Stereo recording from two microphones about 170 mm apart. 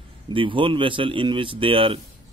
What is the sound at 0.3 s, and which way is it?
Speech, 30° right (ahead or behind).